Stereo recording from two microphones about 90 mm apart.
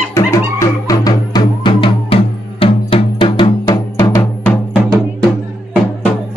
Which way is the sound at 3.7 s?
30° left (ahead or behind).